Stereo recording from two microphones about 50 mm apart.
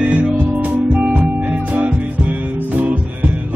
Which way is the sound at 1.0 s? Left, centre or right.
Right.